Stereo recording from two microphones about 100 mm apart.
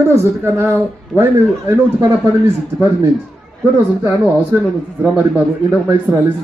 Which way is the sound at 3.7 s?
20° right (ahead or behind).